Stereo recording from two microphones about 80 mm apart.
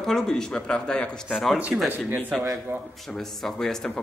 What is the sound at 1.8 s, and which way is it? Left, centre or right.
Speech, right.